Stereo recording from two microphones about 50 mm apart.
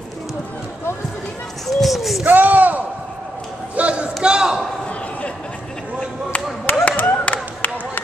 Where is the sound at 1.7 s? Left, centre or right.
Centre.